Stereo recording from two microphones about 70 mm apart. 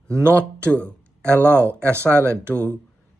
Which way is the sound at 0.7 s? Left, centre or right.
Centre.